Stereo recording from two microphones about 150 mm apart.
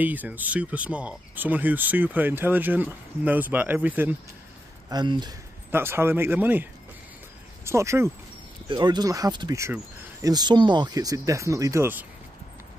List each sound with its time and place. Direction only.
0.0 s speech: 10° right (ahead or behind)
4.8 s speech: 30° right (ahead or behind)
5.7 s speech: 15° right (ahead or behind)
8.6 s speech: 30° right (ahead or behind)